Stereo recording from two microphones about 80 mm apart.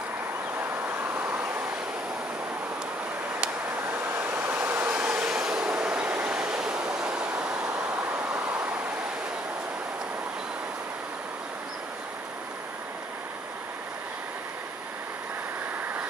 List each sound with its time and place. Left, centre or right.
0.6 s vehicle: right
4.2 s vehicle: right
4.9 s train: centre